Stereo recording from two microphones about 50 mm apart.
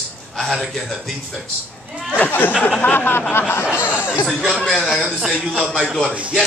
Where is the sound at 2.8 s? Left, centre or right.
Left.